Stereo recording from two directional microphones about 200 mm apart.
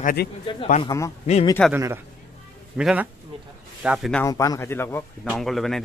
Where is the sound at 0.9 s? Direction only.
20° left (ahead or behind).